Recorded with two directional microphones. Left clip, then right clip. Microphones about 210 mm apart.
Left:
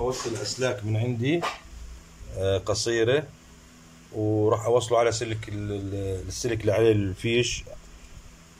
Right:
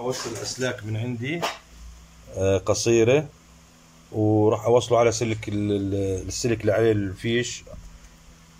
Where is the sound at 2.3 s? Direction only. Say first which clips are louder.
Right 4 dB; 10° right (ahead or behind); by 7.6 s 10° left (ahead or behind).